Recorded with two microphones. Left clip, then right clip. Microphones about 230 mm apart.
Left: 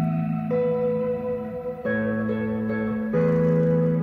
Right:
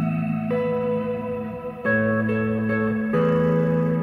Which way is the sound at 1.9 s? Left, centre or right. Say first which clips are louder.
Right 6 dB; right.